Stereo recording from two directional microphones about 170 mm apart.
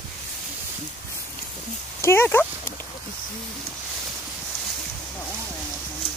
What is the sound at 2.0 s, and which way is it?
Speech, 15° left (ahead or behind).